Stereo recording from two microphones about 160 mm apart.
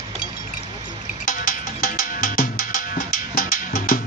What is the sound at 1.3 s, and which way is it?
Music, 60° left (ahead or behind).